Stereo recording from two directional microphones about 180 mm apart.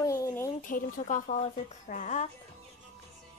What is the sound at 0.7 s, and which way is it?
Speech, 45° left (ahead or behind).